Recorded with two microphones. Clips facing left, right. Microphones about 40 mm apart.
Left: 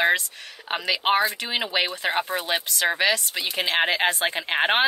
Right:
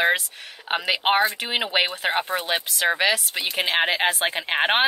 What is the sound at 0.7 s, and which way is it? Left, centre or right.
Speech, centre.